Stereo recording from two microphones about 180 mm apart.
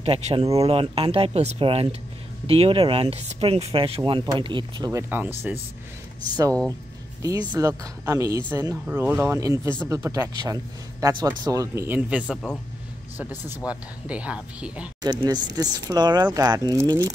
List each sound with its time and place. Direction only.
0.0 s speech: 35° right (ahead or behind)
5.5 s a man's voice: 5° right (ahead or behind)
7.2 s a man's voice: 20° right (ahead or behind)
13.7 s a man's voice: 5° right (ahead or behind)
15.0 s speech: 25° right (ahead or behind)